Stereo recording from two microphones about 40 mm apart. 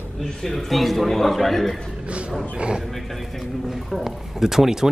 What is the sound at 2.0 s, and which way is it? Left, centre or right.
Wild animals, right.